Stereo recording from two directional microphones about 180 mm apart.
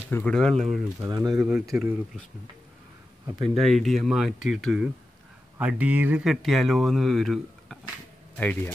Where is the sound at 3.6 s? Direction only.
Centre (ahead or behind).